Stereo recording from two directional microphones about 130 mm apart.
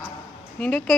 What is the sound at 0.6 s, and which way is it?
Speech, 10° left (ahead or behind).